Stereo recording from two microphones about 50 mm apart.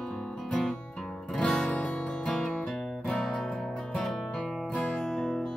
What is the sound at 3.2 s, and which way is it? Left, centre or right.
Music, centre.